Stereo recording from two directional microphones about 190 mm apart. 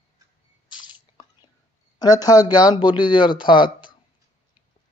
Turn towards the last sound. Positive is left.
turn(degrees=25)  # may be behind; listen again after turning